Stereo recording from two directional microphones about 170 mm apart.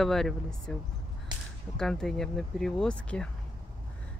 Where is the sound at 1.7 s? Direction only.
5° left (ahead or behind).